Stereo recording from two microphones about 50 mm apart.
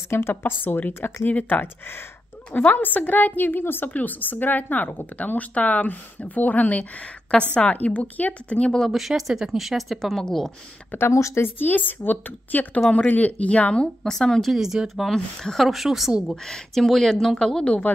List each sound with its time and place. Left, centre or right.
0.1 s a woman's voice: left
8.9 s speech: centre
10.9 s a woman's voice: left
11.1 s a woman's voice: left
11.4 s a woman's voice: left
14.0 s speech: centre
14.5 s speech: centre
15.0 s speech: centre
16.4 s speech: centre
17.4 s a woman's voice: left